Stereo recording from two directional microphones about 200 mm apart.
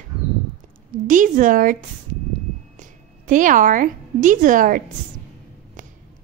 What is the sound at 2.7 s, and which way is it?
A woman's voice, 40° right (ahead or behind).